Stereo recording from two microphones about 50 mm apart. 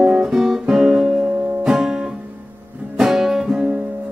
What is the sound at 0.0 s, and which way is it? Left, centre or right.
Guitar, centre.